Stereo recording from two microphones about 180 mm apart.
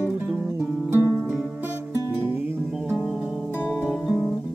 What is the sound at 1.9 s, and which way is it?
Music, 20° left (ahead or behind).